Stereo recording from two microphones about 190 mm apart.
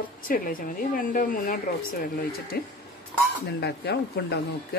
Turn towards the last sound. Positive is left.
turn(degrees=60)  # may be behind; listen again after turning